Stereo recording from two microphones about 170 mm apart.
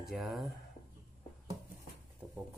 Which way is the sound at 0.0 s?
Centre (ahead or behind).